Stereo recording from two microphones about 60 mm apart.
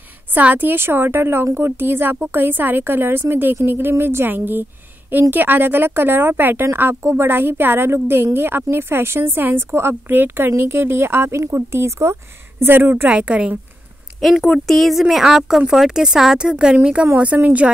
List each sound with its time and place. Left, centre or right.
0.3 s a woman's voice: right
13.1 s speech: centre
14.2 s speech: centre; by 17.6 s right